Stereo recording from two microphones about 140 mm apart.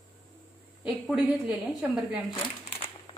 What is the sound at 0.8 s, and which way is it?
A woman's voice, 10° right (ahead or behind).